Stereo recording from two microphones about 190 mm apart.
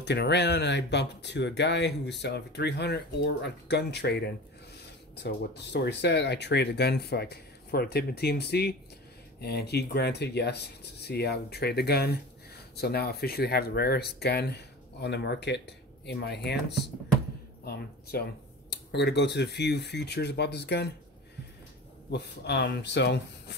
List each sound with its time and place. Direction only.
0.0 s speech: 60° left (ahead or behind)
18.1 s speech: 55° left (ahead or behind)
22.1 s speech: 60° left (ahead or behind)